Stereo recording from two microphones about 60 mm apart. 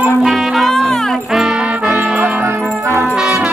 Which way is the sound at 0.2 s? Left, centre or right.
Centre.